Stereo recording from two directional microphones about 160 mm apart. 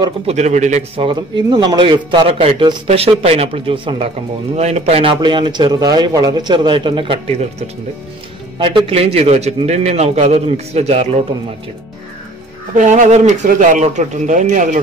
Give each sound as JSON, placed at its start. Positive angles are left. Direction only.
{"t": 0.3, "sound": "speech", "side_deg": -45}
{"t": 0.9, "sound": "a man's voice", "side_deg": -30}
{"t": 4.6, "sound": "a man's voice", "side_deg": -45}
{"t": 12.7, "sound": "speech", "side_deg": -50}